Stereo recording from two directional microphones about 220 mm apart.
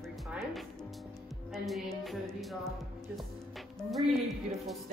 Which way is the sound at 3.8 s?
Centre (ahead or behind).